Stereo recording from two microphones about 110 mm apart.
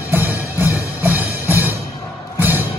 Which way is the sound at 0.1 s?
15° right (ahead or behind).